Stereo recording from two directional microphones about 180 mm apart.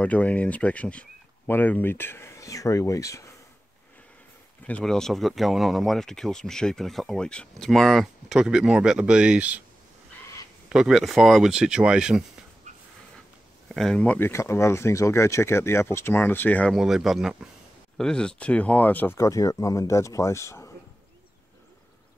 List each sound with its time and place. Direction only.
0.0 s speech: 10° left (ahead or behind)
4.6 s speech: 5° left (ahead or behind)
10.7 s speech: 5° right (ahead or behind)
12.7 s dog: 40° right (ahead or behind)
13.7 s speech: centre (ahead or behind)
16.7 s speech: centre (ahead or behind); by 20.7 s 15° left (ahead or behind)